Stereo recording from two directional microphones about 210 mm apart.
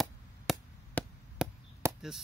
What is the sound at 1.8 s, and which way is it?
Chop, 15° right (ahead or behind).